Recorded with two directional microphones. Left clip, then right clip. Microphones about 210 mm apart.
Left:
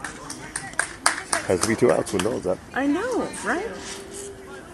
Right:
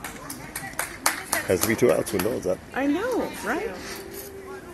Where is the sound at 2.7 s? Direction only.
40° left (ahead or behind).